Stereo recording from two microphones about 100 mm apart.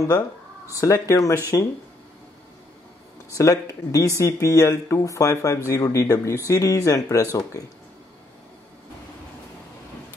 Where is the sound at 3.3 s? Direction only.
35° left (ahead or behind).